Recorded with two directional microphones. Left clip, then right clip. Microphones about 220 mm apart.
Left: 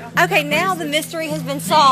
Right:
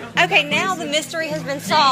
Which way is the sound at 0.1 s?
45° left (ahead or behind).